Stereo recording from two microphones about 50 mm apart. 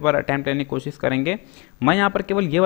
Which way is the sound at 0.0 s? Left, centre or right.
Centre.